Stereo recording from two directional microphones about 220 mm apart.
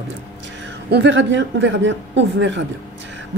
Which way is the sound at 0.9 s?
55° right (ahead or behind).